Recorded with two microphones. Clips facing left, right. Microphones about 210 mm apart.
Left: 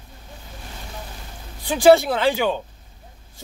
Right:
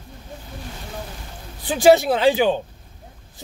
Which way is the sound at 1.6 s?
15° right (ahead or behind).